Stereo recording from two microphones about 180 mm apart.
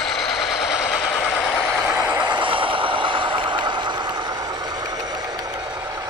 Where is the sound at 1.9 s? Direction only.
15° right (ahead or behind).